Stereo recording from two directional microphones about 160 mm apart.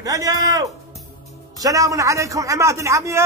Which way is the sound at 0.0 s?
20° right (ahead or behind).